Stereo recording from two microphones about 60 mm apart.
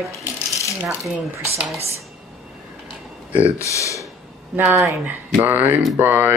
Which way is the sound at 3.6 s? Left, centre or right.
Left.